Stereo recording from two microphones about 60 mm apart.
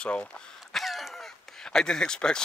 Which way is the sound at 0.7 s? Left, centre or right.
Centre.